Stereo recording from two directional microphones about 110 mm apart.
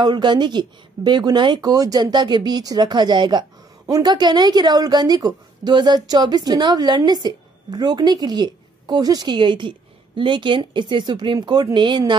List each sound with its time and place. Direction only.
0.0 s speech: 40° right (ahead or behind)